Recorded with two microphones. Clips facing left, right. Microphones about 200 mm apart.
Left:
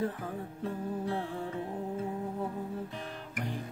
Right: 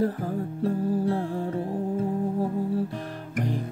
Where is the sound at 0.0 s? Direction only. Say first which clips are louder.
Right 8 dB; 35° right (ahead or behind).